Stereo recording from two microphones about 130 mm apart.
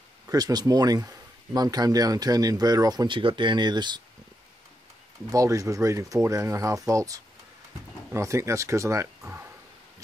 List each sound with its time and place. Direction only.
0.3 s speech: 30° right (ahead or behind)
5.3 s speech: 25° right (ahead or behind)